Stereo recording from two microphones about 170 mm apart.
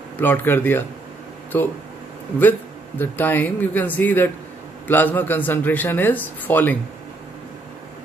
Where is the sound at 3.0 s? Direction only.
10° left (ahead or behind).